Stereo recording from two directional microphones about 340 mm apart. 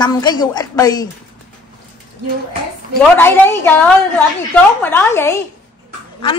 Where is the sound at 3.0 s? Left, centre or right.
Centre.